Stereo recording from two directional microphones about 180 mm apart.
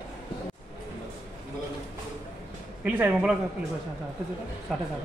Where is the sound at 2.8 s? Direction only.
10° right (ahead or behind).